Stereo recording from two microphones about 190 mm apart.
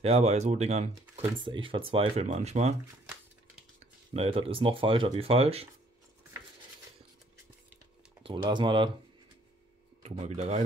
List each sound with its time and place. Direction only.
0.0 s speech: 35° right (ahead or behind)
3.8 s speech: 30° right (ahead or behind)
8.4 s speech: 25° right (ahead or behind)
10.0 s speech: 35° right (ahead or behind)